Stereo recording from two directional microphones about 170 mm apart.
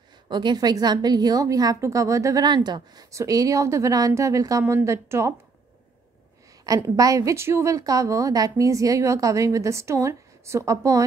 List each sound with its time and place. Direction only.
0.3 s a woman's voice: 25° right (ahead or behind)
6.6 s a woman's voice: 20° right (ahead or behind)